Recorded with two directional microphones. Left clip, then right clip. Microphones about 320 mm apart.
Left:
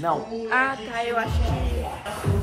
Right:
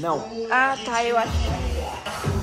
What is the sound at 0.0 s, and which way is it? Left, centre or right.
Speech, centre.